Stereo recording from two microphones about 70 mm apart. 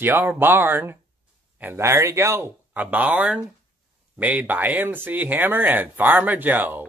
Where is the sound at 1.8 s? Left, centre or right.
Right.